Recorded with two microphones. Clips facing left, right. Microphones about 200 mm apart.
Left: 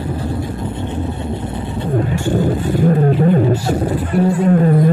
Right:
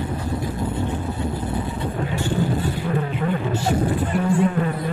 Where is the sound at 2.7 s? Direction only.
40° left (ahead or behind).